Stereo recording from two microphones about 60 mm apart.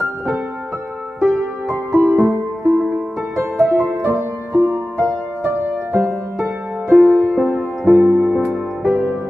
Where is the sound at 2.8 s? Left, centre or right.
Centre.